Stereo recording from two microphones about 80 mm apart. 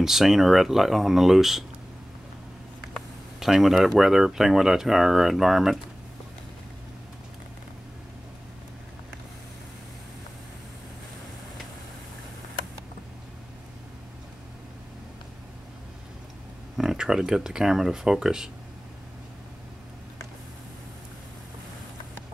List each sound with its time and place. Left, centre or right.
0.0 s speech: centre
3.3 s speech: centre
16.7 s speech: centre